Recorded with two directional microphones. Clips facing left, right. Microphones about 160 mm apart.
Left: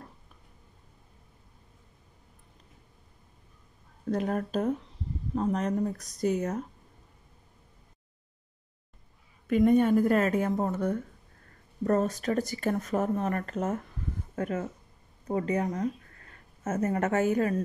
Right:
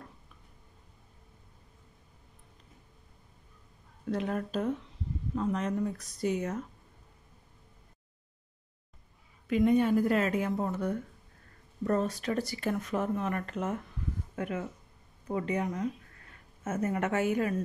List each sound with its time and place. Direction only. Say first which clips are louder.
4.1 s speech: left 3 dB; 45° left (ahead or behind)
9.5 s speech: left 3 dB; 50° left (ahead or behind)